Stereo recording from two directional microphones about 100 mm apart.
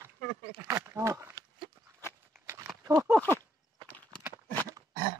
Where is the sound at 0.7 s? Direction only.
30° right (ahead or behind).